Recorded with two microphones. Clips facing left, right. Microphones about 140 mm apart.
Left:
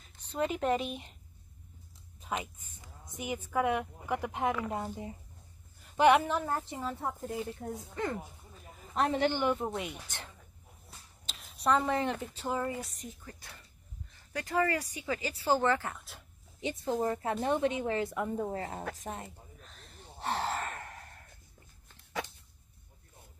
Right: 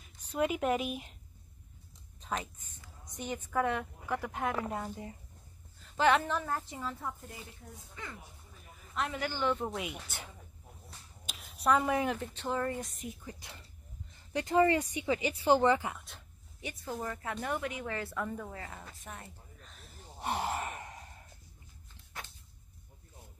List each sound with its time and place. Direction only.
0.2 s a woman's voice: 10° right (ahead or behind)
2.1 s whispering: 10° left (ahead or behind)
3.2 s a woman's voice: 10° left (ahead or behind)
7.6 s speech: 55° left (ahead or behind)
8.9 s speech: 40° left (ahead or behind)
9.2 s speech: 20° left (ahead or behind)
9.5 s speech: 5° left (ahead or behind)
13.1 s speech: 15° right (ahead or behind)
16.6 s speech: 25° left (ahead or behind)
19.6 s a sound: centre (ahead or behind)
20.2 s gasp: 15° right (ahead or behind)